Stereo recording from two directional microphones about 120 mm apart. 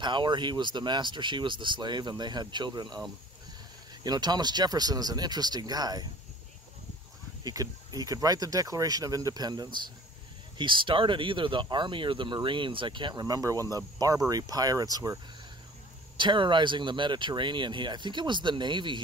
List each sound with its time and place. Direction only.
0.0 s speech: 40° right (ahead or behind)
4.0 s speech: 35° right (ahead or behind)
7.4 s speech: 30° right (ahead or behind)
16.2 s speech: 40° right (ahead or behind)